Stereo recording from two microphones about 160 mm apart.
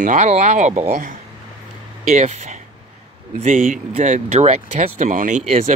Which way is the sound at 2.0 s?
45° right (ahead or behind).